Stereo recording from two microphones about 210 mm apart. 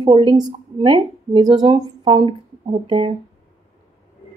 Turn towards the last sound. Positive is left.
turn(degrees=-25)  # may be behind; listen again after turning